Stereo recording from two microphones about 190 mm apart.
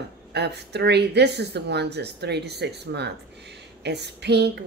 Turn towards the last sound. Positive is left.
turn(degrees=-60)  # may be behind; listen again after turning